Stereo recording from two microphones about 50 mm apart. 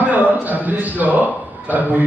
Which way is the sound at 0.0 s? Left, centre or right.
Right.